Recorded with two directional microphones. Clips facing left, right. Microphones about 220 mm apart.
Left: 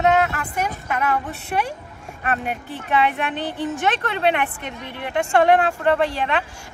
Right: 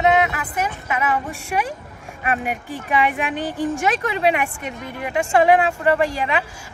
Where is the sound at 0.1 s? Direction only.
5° right (ahead or behind).